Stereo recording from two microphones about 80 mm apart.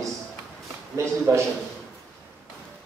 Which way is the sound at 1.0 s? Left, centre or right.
Right.